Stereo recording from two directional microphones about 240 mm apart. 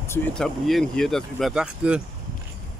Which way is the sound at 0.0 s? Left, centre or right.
Centre.